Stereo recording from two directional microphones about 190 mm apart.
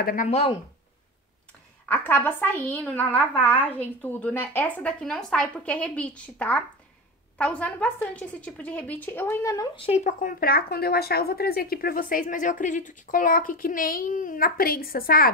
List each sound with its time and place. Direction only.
0.0 s speech: 45° left (ahead or behind)
1.9 s a woman's voice: 10° left (ahead or behind)
9.8 s speech: 30° left (ahead or behind)
10.0 s speech: 50° left (ahead or behind)